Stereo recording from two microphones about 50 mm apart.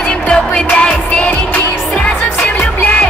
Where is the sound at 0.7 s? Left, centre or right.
Left.